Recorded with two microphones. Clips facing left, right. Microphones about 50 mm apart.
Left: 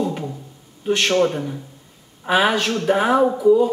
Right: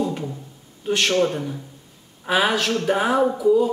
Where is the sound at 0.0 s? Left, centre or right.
Centre.